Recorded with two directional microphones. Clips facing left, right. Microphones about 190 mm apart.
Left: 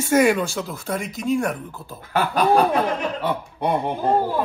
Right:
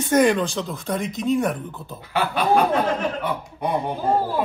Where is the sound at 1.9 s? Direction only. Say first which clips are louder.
Left 2 dB; 50° left (ahead or behind).